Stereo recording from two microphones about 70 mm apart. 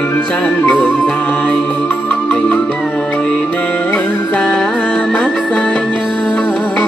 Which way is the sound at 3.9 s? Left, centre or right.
Centre.